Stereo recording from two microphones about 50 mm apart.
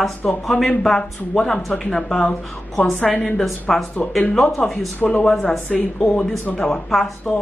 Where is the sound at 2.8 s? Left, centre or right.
Left.